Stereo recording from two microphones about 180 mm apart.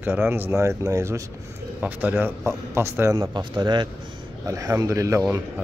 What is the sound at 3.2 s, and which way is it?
A man's voice, 25° right (ahead or behind).